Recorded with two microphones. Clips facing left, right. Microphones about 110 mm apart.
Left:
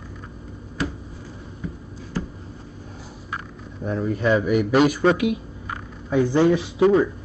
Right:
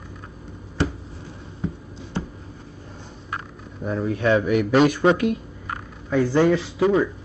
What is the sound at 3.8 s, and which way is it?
A man's voice, centre (ahead or behind).